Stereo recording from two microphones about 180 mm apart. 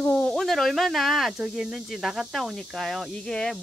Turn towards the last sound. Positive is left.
turn(degrees=5)  # may be behind; listen again after turning